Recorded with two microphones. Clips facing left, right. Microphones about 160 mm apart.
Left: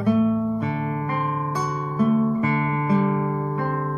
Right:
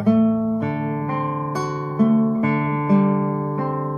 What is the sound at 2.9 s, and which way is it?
Music, 10° right (ahead or behind).